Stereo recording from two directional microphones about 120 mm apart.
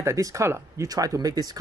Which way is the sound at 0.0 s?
25° right (ahead or behind).